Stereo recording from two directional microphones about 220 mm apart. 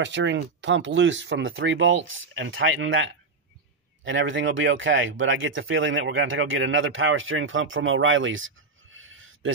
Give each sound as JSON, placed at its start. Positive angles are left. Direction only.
{"t": 0.0, "sound": "speech", "side_deg": -55}